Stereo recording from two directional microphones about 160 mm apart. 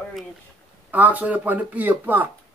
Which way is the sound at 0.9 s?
10° right (ahead or behind).